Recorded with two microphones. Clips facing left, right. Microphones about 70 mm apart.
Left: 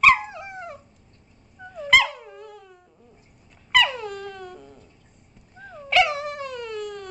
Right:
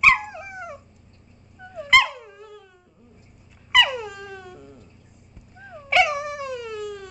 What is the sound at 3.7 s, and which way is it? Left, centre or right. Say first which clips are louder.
Dog: right 1 dB; centre.